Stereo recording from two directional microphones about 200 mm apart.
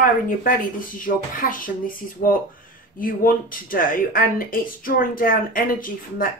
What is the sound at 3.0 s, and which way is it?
Speech, 45° left (ahead or behind).